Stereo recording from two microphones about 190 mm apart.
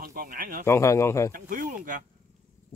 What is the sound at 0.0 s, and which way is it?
Speech, 50° right (ahead or behind).